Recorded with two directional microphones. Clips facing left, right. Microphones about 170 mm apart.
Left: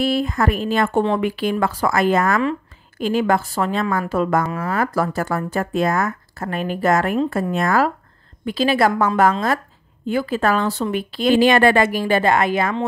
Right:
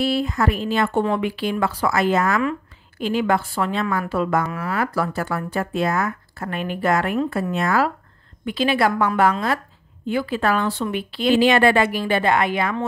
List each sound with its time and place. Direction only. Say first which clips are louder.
0.0 s a woman's voice: left 1 dB; 50° left (ahead or behind)